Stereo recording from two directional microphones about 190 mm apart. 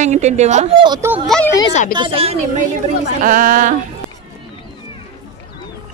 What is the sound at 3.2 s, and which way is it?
Speech, 45° right (ahead or behind).